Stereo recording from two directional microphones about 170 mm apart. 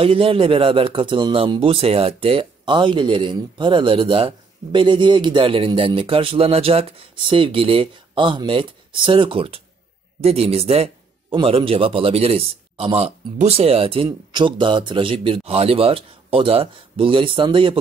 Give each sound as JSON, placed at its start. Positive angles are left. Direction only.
{"t": 0.0, "sound": "a man's voice", "side_deg": -35}